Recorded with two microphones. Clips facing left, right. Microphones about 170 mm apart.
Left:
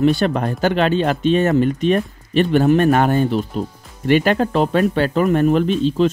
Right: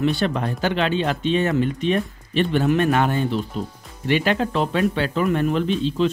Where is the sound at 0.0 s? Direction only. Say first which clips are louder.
Left 5 dB; 45° left (ahead or behind).